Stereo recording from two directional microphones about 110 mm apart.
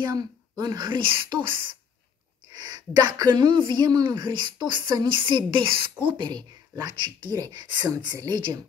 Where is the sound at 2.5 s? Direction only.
35° right (ahead or behind).